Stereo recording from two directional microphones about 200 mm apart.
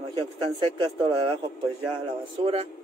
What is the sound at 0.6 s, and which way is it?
Speech, 20° right (ahead or behind).